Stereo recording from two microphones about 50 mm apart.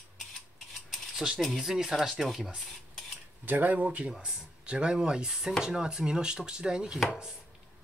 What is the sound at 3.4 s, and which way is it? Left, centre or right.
Speech, right.